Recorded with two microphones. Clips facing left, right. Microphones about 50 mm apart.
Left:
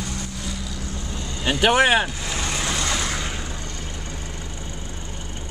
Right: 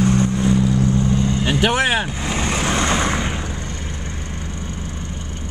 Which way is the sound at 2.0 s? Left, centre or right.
Right.